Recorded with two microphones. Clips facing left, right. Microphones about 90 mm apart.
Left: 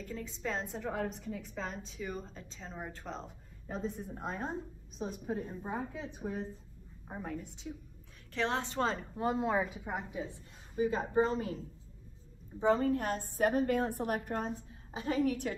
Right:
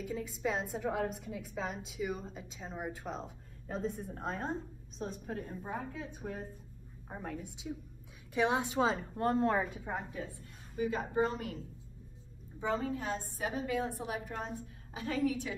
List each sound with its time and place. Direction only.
0.0 s a woman's voice: 5° right (ahead or behind); by 6.4 s 15° left (ahead or behind)
7.1 s a woman's voice: centre (ahead or behind)
10.8 s a woman's voice: 30° left (ahead or behind)
12.6 s a woman's voice: 55° left (ahead or behind)
14.9 s a woman's voice: 35° left (ahead or behind)
15.2 s a woman's voice: 55° left (ahead or behind)